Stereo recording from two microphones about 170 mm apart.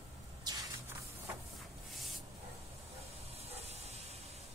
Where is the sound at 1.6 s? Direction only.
Centre (ahead or behind).